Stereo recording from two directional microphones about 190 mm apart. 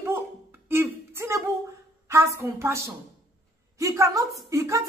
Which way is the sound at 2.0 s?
15° right (ahead or behind).